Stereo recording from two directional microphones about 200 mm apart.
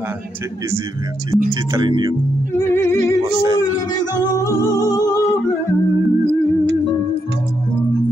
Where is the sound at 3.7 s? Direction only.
20° left (ahead or behind).